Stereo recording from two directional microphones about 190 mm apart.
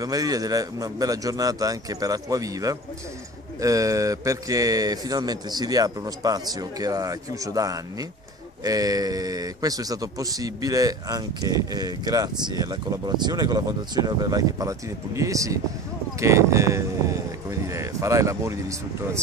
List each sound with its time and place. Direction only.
0.0 s speech: 20° right (ahead or behind)